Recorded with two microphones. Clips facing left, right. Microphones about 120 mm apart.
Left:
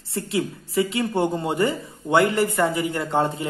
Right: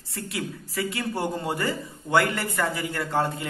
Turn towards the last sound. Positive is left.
turn(degrees=20)  # may be behind; listen again after turning